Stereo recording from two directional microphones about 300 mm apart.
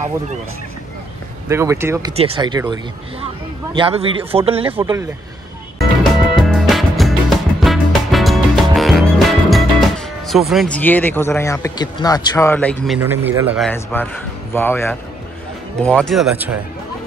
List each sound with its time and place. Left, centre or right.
1.5 s speech: centre
6.4 s music: centre
13.7 s speech: centre